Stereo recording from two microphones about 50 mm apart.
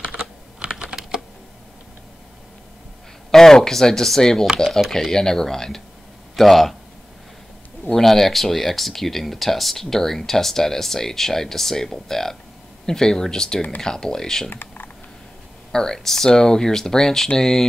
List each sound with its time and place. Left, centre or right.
0.1 s computer keyboard: centre
3.3 s speech: centre
4.6 s speech: centre
4.9 s a man's voice: centre
7.9 s speech: centre
14.5 s computer keyboard: left
15.7 s speech: centre